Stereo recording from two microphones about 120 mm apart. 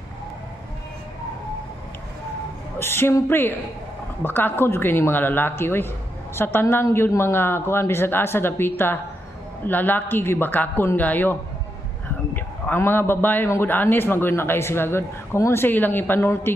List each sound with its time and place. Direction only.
2.8 s a man's voice: 20° left (ahead or behind)
12.4 s a man's voice: 15° left (ahead or behind)